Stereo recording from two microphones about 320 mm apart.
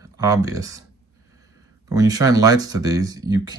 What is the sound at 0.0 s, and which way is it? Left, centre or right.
Speech, centre.